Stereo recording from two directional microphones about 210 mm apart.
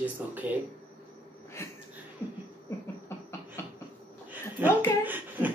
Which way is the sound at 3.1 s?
10° left (ahead or behind).